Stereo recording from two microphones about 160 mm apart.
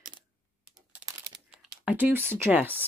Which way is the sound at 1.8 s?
10° right (ahead or behind).